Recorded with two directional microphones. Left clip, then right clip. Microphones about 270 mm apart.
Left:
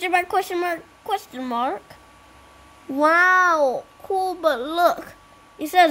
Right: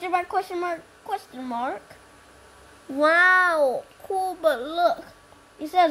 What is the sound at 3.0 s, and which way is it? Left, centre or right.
A child's voice, centre.